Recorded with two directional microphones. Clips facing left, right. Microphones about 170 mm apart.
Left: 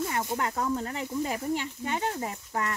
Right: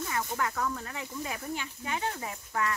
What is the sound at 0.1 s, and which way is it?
Speech, 30° left (ahead or behind).